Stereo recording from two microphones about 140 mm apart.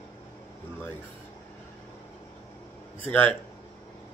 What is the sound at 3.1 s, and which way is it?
Speech, 15° left (ahead or behind).